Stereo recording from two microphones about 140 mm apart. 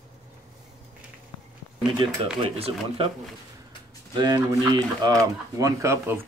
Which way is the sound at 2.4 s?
40° right (ahead or behind).